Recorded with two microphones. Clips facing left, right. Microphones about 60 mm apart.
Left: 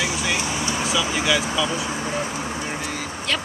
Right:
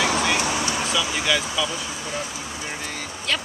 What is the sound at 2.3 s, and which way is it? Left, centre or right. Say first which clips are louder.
Vehicle: left 5 dB; left.